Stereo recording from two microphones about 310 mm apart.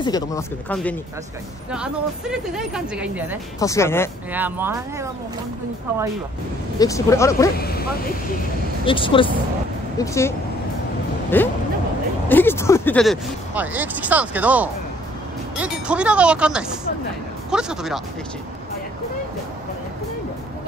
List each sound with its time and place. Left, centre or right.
0.0 s speech: centre
3.5 s speech: centre
4.3 s speech: centre
6.8 s speech: centre
7.5 s speech: left
8.8 s speech: centre
11.3 s speech: centre